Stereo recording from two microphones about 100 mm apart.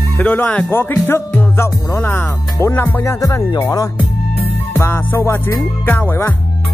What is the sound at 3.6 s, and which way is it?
Speech, 35° left (ahead or behind).